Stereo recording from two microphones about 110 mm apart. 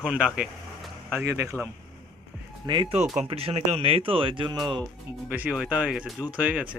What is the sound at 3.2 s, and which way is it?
Speech, 60° right (ahead or behind).